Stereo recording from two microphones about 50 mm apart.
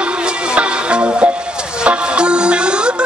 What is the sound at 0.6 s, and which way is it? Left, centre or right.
Music, right.